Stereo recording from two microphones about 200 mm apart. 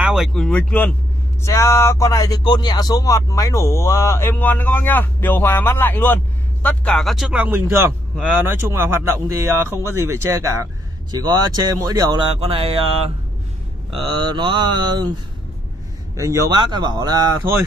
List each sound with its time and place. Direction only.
0.0 s speech: centre (ahead or behind); by 12.2 s 15° right (ahead or behind)
12.4 s speech: 30° right (ahead or behind)
16.2 s speech: 15° right (ahead or behind)